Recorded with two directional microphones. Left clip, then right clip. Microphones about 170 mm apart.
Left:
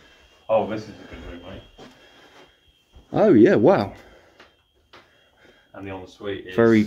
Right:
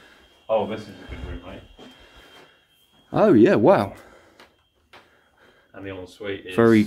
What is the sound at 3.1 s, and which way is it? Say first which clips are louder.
Speech: left 1 dB; 25° right (ahead or behind).